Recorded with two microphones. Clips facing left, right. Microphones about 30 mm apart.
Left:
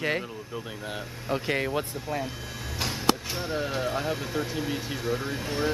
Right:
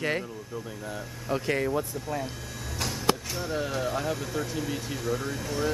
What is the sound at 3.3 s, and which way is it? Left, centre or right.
Speech, left.